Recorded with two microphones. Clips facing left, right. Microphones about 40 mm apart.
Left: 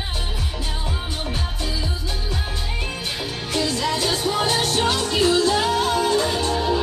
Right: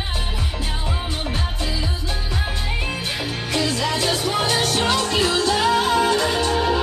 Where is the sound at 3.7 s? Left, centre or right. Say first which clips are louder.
Right 1 dB; right.